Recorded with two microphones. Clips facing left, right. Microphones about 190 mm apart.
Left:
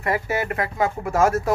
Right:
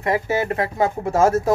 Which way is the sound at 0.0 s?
20° right (ahead or behind).